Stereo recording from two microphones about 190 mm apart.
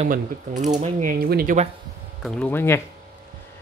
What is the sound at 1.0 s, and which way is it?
Speech, 45° right (ahead or behind).